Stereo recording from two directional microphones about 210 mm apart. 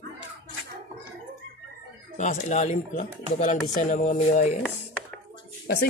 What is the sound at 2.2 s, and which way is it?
Speech, 35° left (ahead or behind).